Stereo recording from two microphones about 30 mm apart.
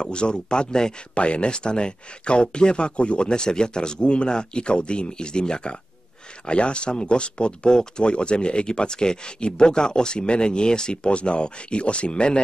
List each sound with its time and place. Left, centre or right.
0.0 s speech: left
1.1 s speech: left
11.1 s speech: left